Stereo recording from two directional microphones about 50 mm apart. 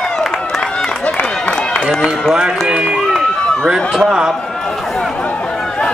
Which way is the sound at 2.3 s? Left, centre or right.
Centre.